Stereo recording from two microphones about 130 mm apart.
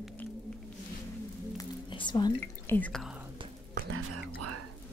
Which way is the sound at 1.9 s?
35° left (ahead or behind).